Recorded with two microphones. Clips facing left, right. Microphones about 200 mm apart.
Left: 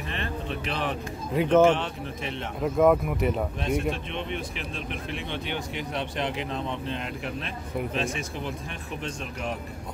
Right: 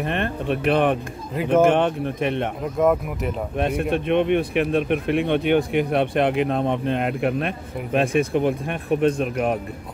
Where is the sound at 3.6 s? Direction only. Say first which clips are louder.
Right 5 dB; 60° right (ahead or behind).